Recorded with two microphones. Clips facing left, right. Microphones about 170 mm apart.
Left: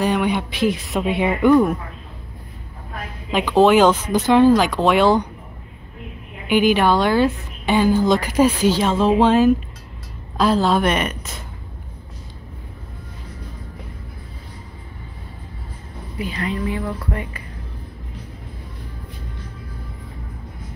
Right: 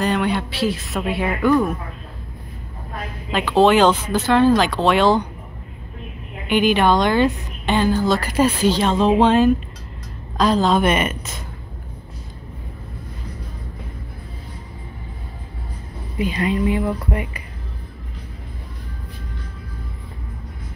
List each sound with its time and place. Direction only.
0.0 s speech: 10° left (ahead or behind)
3.3 s speech: 15° left (ahead or behind)
6.5 s a woman's voice: 5° left (ahead or behind)
16.2 s speech: 20° right (ahead or behind)